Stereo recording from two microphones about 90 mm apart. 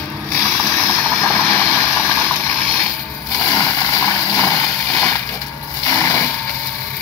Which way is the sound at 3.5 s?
40° left (ahead or behind).